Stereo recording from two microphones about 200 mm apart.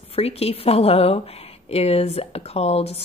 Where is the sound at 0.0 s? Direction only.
30° left (ahead or behind).